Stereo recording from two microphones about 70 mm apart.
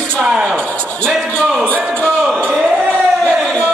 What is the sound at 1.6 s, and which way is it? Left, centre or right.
Speech, right.